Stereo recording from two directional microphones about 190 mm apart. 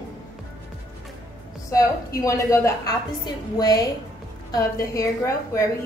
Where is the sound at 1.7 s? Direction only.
15° left (ahead or behind).